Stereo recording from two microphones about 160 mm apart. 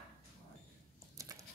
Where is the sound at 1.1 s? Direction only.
20° right (ahead or behind).